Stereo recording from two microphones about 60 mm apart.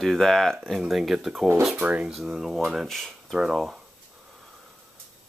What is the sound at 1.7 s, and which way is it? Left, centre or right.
Speech, right.